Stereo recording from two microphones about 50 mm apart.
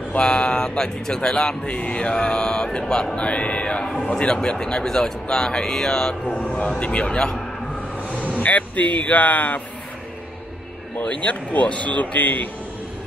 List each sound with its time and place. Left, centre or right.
0.2 s a man's voice: left
1.8 s a man's voice: left; by 6.1 s centre
6.2 s a man's voice: left
8.4 s speech: left
11.0 s a man's voice: left